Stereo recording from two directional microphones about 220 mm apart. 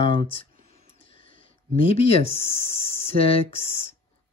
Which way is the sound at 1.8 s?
25° left (ahead or behind).